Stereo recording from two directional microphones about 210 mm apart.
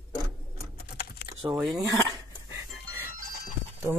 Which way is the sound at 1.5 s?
5° right (ahead or behind).